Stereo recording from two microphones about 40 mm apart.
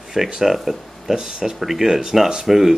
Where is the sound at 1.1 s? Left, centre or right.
Centre.